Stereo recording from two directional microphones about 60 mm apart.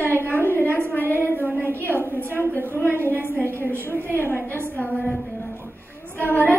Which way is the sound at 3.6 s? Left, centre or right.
Left.